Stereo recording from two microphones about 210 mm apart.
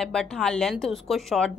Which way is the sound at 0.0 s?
5° left (ahead or behind).